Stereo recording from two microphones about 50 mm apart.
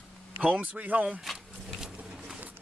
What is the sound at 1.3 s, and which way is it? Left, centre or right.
Speech, centre.